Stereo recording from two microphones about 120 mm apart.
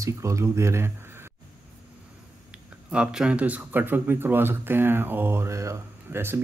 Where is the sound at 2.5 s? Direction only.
10° right (ahead or behind).